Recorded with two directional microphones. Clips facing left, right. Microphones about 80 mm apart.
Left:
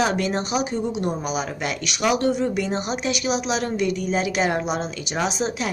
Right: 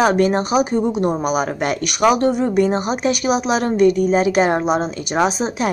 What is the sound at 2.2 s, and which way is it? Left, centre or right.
A woman's voice, right.